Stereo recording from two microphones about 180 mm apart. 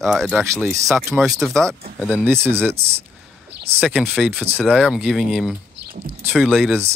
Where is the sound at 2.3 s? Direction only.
15° right (ahead or behind).